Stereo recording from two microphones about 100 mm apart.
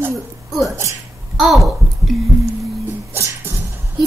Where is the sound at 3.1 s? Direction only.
25° right (ahead or behind).